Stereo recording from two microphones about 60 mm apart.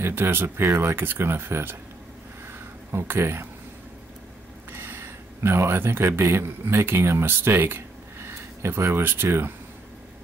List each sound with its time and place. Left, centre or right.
0.0 s speech: right
2.9 s speech: right
4.7 s a man's voice: right